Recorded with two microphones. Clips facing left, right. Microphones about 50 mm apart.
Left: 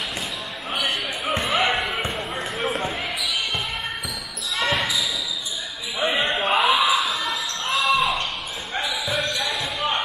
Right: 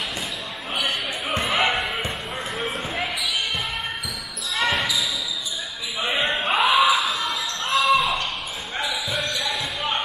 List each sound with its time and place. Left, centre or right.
0.7 s basketball bounce: centre
4.6 s basketball bounce: centre
6.0 s a sound: centre
7.1 s basketball bounce: centre